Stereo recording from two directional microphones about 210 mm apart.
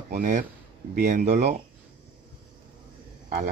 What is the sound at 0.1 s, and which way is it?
Speech, 35° right (ahead or behind).